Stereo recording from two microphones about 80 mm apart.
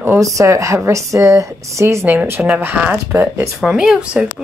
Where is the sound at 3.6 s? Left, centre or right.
Centre.